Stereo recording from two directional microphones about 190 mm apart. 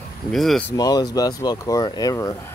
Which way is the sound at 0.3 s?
Centre (ahead or behind).